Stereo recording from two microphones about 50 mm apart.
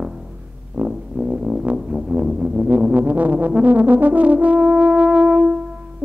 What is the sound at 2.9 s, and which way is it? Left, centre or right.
Brass instrument, right.